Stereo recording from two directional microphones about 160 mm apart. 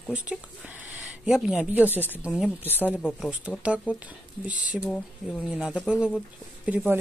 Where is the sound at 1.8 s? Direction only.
10° left (ahead or behind).